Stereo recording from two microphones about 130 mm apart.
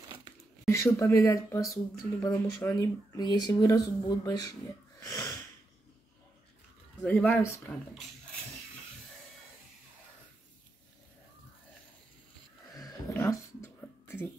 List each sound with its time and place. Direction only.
0.7 s speech: 20° left (ahead or behind)
5.0 s snort: 25° left (ahead or behind)
7.1 s speech: 15° left (ahead or behind)
12.7 s a sound: 25° left (ahead or behind)